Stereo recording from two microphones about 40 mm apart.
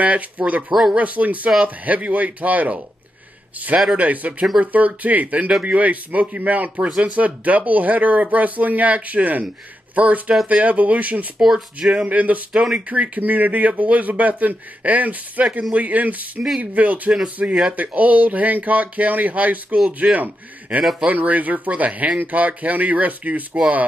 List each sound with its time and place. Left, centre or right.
0.0 s speech: right
0.7 s speech: centre
0.9 s speech: right
3.9 s speech: right
11.4 s speech: centre
11.9 s speech: right
17.4 s speech: right